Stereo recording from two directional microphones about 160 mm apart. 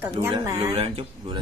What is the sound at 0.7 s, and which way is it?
Speech, 35° right (ahead or behind).